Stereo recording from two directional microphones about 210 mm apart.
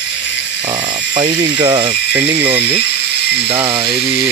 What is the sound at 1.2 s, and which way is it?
Speech, 20° right (ahead or behind).